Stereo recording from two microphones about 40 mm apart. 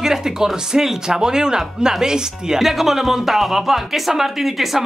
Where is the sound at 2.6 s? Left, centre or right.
Centre.